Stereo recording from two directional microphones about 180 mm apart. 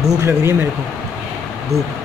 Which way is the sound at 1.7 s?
15° right (ahead or behind).